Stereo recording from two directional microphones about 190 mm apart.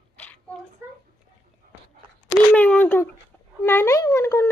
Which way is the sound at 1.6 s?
50° right (ahead or behind).